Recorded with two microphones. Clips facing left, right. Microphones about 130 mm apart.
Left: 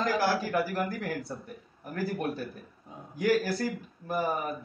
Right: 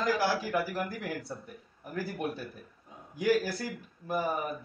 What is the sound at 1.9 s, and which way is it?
Speech, 5° right (ahead or behind).